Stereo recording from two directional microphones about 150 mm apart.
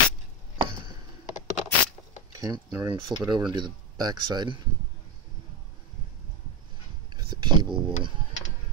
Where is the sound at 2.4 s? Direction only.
25° right (ahead or behind).